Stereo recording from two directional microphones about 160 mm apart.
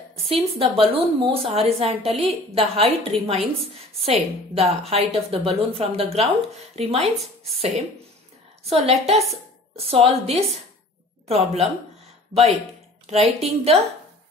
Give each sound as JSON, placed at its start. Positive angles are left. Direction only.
{"t": 0.3, "sound": "a woman's voice", "side_deg": -35}
{"t": 7.2, "sound": "a woman's voice", "side_deg": 0}
{"t": 8.6, "sound": "a woman's voice", "side_deg": -40}
{"t": 13.0, "sound": "a woman's voice", "side_deg": -40}